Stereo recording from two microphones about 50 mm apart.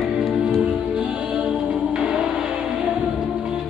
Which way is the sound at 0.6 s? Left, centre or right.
Centre.